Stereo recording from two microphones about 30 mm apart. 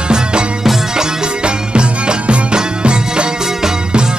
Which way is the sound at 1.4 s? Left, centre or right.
Right.